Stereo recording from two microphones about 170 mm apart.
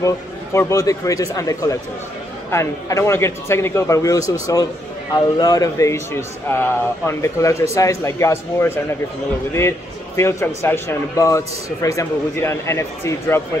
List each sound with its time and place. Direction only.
0.0 s a man's voice: 15° left (ahead or behind)